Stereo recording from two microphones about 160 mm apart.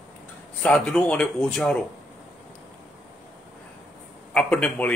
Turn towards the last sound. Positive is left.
turn(degrees=10)  # may be behind; listen again after turning